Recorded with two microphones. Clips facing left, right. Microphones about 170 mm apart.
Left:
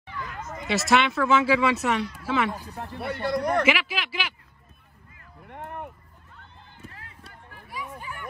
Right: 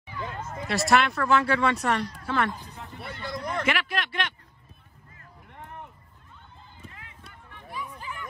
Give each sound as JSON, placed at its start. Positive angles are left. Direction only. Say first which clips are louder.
{"t": 0.1, "sound": "a sound", "louder": "right 1 dB", "side_deg": -25}
{"t": 0.7, "sound": "speech", "louder": "left 1 dB", "side_deg": 0}
{"t": 3.0, "sound": "speech", "louder": "left 9 dB", "side_deg": 60}
{"t": 3.6, "sound": "speech", "louder": "left 3 dB", "side_deg": 0}
{"t": 5.5, "sound": "a sound", "louder": "left 6 dB", "side_deg": 60}
{"t": 6.9, "sound": "run", "louder": "left 2 dB", "side_deg": 35}